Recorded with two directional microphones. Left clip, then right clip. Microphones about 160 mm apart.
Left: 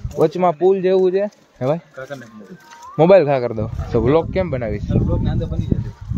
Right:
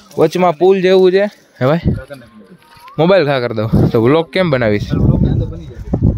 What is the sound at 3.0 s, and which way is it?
Speech, 15° right (ahead or behind).